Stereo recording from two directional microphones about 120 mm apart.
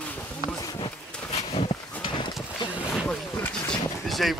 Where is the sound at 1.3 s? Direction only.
60° left (ahead or behind).